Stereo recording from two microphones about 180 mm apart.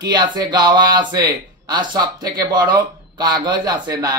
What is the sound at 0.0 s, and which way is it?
A man's voice, 20° right (ahead or behind).